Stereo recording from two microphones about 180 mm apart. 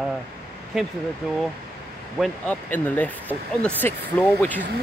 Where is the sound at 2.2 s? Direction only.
10° left (ahead or behind).